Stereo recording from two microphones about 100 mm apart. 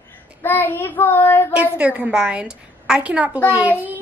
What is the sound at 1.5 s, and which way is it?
A woman's voice, 10° right (ahead or behind).